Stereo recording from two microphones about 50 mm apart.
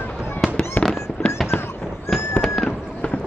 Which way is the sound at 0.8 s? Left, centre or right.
Left.